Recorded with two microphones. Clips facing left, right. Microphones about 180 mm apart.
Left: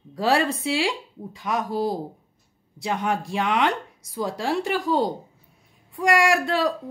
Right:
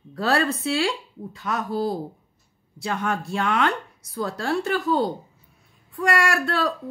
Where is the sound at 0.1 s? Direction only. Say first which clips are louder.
Left 1 dB; 15° left (ahead or behind).